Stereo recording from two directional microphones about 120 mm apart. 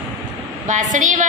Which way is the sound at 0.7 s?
90° right.